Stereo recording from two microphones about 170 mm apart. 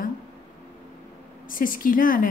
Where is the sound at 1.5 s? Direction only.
55° left (ahead or behind).